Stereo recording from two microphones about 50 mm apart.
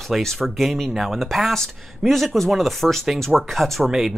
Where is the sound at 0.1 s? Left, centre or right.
Centre.